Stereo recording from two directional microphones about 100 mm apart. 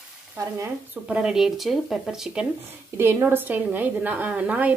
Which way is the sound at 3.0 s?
20° right (ahead or behind).